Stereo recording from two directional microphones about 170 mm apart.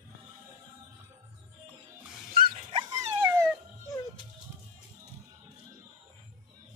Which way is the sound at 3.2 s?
15° right (ahead or behind).